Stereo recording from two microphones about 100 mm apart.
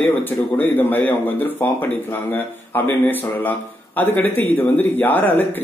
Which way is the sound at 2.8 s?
20° left (ahead or behind).